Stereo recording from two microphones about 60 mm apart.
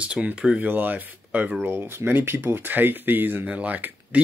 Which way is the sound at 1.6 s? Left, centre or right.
Right.